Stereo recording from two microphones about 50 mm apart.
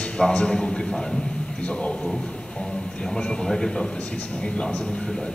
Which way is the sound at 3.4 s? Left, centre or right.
Centre.